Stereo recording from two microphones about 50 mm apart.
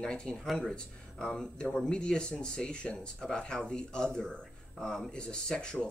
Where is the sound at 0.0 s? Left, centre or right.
Centre.